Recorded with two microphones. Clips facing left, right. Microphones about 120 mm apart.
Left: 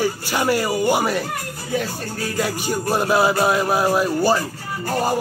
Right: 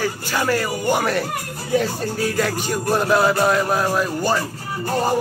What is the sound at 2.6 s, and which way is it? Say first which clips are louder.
Speech: left 1 dB; 5° left (ahead or behind).